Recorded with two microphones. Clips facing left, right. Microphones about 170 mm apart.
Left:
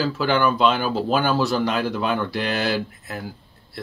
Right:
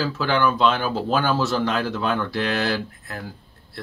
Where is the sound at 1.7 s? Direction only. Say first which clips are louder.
Left 1 dB; 15° left (ahead or behind).